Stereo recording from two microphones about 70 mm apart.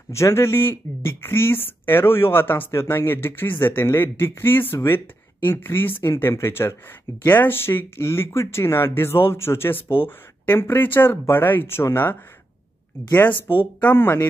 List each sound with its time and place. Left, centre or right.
0.1 s speech: left